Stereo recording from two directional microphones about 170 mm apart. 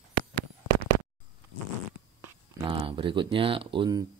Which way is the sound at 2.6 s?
30° right (ahead or behind).